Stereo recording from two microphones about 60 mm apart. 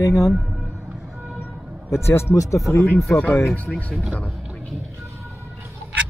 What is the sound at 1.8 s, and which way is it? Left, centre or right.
Speech, left.